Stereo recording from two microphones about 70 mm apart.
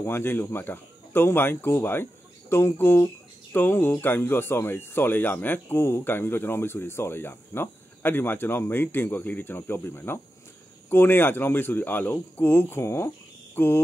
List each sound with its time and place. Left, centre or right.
0.0 s speech: left